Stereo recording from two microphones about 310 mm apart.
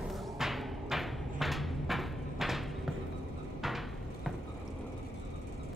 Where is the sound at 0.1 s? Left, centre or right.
Centre.